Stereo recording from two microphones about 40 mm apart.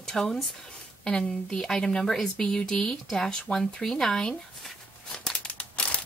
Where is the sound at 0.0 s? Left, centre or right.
Centre.